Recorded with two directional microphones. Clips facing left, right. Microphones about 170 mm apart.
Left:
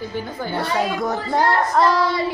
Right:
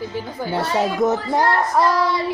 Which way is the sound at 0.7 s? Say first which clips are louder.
Right 4 dB; 20° right (ahead or behind).